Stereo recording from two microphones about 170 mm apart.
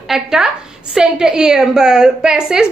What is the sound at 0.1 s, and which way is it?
A woman's voice, centre (ahead or behind).